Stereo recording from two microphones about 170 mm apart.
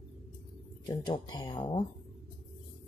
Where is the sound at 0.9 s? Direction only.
25° left (ahead or behind).